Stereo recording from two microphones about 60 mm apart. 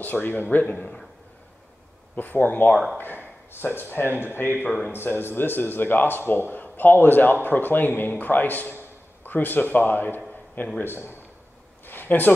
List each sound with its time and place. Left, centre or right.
0.0 s a man's voice: left
2.1 s a man's voice: left
11.8 s a sound: left